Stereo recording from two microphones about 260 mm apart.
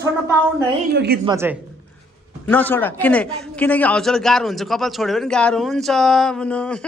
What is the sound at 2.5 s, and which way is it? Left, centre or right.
A man's voice, centre.